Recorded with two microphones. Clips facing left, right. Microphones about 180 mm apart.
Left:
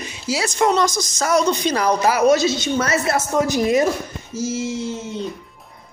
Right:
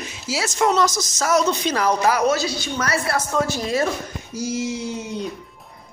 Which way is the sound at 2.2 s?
20° left (ahead or behind).